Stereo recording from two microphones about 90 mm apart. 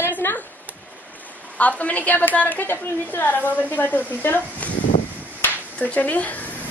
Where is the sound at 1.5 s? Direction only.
15° left (ahead or behind).